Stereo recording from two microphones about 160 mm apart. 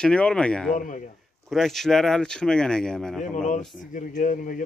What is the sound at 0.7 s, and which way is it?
Speech, 55° left (ahead or behind).